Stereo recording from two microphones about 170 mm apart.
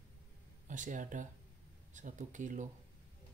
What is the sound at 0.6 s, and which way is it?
Speech, 50° right (ahead or behind).